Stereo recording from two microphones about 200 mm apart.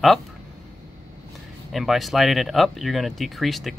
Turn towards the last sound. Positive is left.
turn(degrees=0)  # may be behind; listen again after turning